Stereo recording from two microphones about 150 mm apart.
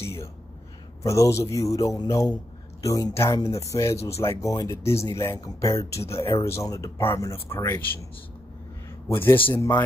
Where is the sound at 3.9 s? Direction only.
45° left (ahead or behind).